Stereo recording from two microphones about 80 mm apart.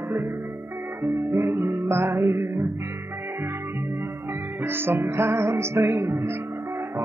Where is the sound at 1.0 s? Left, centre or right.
Right.